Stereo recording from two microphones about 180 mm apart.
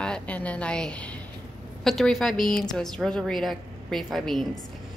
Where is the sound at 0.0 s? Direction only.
5° left (ahead or behind).